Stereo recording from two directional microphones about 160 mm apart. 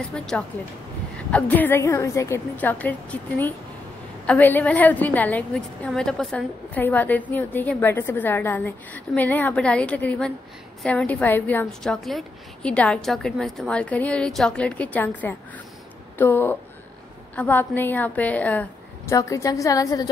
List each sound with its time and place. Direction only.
0.1 s a woman's voice: 5° left (ahead or behind)
19.1 s a woman's voice: 20° left (ahead or behind)